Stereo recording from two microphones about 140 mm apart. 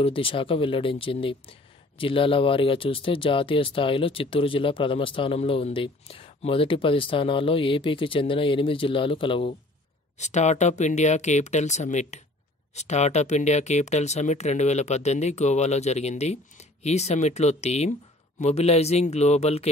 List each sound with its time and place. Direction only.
0.0 s speech: 40° left (ahead or behind)
10.1 s speech: 55° left (ahead or behind)